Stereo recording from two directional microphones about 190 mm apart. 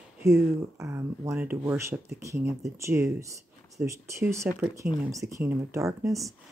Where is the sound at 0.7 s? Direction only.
15° right (ahead or behind).